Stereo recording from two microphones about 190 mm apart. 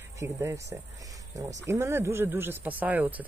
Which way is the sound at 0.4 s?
15° right (ahead or behind).